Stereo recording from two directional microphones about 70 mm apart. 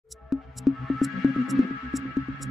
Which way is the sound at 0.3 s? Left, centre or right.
Centre.